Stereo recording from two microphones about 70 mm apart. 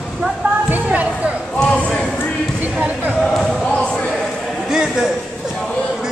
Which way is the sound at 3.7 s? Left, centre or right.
Centre.